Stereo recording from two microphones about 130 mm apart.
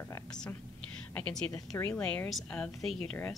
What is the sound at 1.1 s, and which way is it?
A woman's voice, 10° left (ahead or behind).